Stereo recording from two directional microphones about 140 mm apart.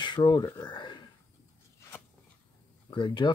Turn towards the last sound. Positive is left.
turn(degrees=35)  # may be behind; listen again after turning